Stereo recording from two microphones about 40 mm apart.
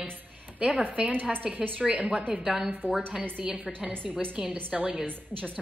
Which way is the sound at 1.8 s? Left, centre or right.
Right.